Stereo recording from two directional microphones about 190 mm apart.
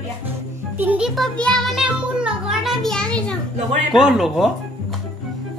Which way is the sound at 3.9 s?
Centre (ahead or behind).